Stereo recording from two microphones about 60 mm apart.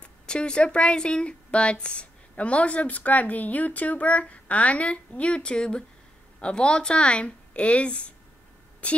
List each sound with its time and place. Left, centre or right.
0.3 s a woman's voice: centre